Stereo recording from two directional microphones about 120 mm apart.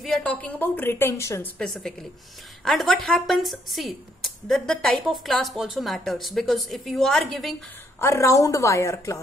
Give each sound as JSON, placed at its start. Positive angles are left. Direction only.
{"t": 0.0, "sound": "a woman's voice", "side_deg": 5}
{"t": 1.6, "sound": "a woman's voice", "side_deg": 5}
{"t": 8.0, "sound": "a woman's voice", "side_deg": 25}